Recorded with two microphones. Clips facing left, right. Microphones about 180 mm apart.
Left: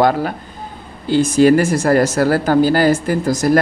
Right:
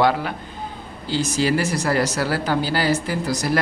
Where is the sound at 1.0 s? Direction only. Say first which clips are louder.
Left 10 dB; 55° left (ahead or behind).